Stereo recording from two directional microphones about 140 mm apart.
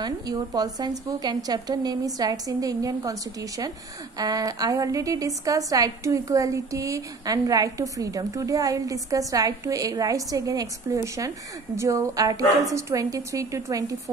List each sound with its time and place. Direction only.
0.0 s a woman's voice: 30° right (ahead or behind)